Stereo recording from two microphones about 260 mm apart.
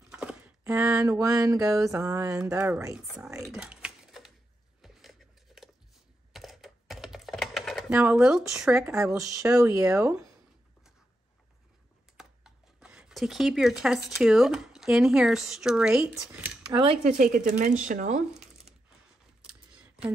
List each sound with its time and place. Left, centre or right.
0.1 s a sound: centre
1.9 s speech: centre
3.4 s typing: centre
4.8 s a sound: centre
6.3 s computer keyboard: centre
9.3 s speech: centre
12.2 s speech: centre
16.7 s speech: right